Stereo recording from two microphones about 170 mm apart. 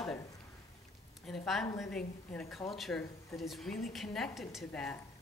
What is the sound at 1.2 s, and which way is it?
A woman's voice, centre (ahead or behind).